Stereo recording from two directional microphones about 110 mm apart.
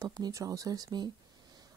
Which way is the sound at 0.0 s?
35° right (ahead or behind).